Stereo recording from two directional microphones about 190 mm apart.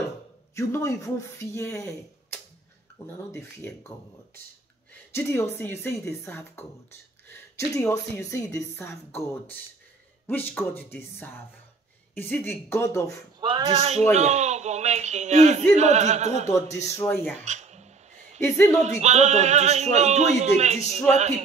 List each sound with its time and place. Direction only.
0.6 s a woman's voice: 15° left (ahead or behind)
5.1 s a woman's voice: 15° left (ahead or behind)
13.4 s speech: 25° right (ahead or behind)
17.0 s a woman's voice: 10° left (ahead or behind)
17.5 s a sound: 35° right (ahead or behind)
18.4 s a woman's voice: 15° left (ahead or behind)
18.8 s speech: 35° right (ahead or behind)